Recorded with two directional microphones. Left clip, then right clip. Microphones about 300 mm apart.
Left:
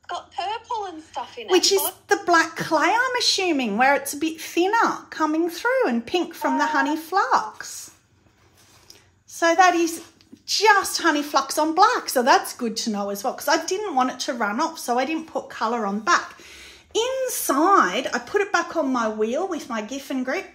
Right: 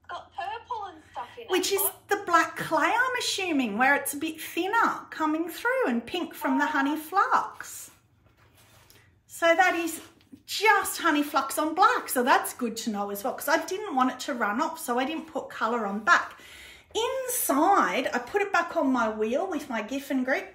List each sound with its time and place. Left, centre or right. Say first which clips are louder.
1.5 s a woman's voice: left 8 dB; left
9.4 s a woman's voice: left 5 dB; left
17.5 s a woman's voice: left 4 dB; centre